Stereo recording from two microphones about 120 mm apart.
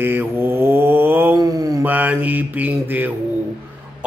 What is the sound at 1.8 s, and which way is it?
Speech, 15° right (ahead or behind).